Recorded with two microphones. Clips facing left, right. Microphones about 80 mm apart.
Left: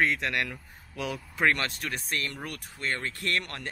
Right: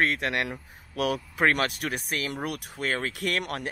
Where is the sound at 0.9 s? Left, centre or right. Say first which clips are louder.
Right 5 dB; right.